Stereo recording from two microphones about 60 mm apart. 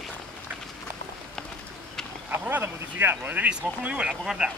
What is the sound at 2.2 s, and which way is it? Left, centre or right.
Speech, right.